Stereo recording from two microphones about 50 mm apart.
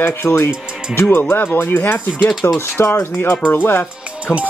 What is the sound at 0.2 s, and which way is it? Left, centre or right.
Speech, left.